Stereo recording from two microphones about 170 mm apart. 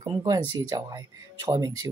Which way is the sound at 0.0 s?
20° right (ahead or behind).